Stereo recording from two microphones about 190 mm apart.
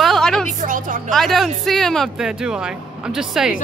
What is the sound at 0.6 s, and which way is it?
Speech, 45° right (ahead or behind).